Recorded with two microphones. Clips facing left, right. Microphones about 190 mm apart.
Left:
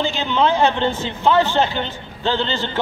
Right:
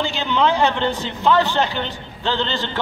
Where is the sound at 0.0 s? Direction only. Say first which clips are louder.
Left 1 dB; 15° left (ahead or behind).